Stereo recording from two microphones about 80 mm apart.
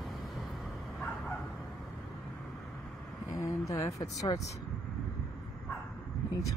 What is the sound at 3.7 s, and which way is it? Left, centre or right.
Speech, left.